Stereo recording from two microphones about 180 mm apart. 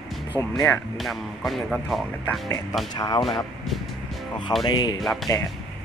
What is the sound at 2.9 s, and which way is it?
Speech, 20° left (ahead or behind).